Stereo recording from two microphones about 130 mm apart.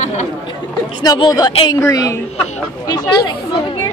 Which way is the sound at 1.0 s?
35° left (ahead or behind).